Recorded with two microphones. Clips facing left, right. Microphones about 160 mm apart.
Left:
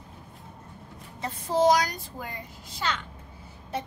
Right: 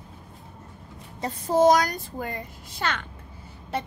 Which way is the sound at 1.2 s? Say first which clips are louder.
Right 3 dB; 45° right (ahead or behind).